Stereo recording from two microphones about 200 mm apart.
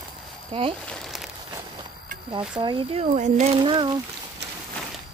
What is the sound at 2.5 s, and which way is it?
Speech, 25° right (ahead or behind).